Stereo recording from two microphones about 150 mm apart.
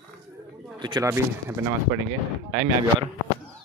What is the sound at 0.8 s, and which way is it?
Speech, 30° right (ahead or behind).